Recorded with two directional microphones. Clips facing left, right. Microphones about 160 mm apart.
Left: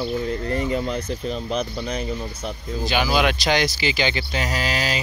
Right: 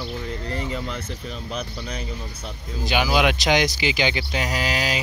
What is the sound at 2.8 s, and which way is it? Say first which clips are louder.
Speech: even; 15° right (ahead or behind).